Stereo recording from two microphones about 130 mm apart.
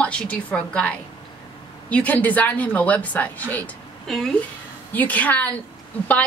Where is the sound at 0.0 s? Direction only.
10° left (ahead or behind).